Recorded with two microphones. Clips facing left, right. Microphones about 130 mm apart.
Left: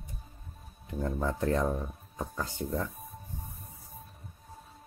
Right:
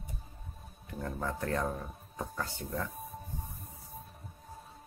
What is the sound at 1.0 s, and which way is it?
Speech, 25° left (ahead or behind).